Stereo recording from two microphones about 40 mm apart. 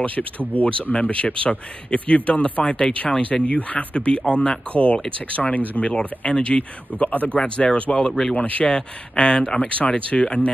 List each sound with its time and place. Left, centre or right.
0.5 s speech: left
2.7 s speech: left
5.8 s speech: left
8.1 s speech: centre
8.4 s speech: left
9.6 s speech: left